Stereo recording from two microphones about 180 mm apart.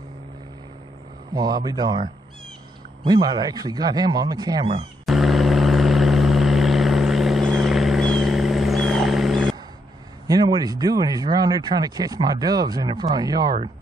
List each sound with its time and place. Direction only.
1.3 s speech: 20° right (ahead or behind)
5.0 s vehicle: centre (ahead or behind)
10.2 s speech: 20° right (ahead or behind)